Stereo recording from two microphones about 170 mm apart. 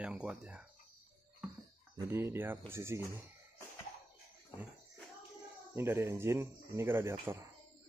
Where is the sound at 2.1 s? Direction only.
15° right (ahead or behind).